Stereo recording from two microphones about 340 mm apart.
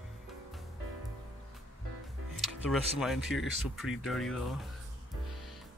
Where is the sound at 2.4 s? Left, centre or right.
Centre.